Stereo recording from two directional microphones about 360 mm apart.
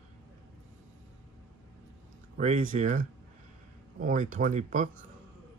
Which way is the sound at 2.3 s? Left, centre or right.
Centre.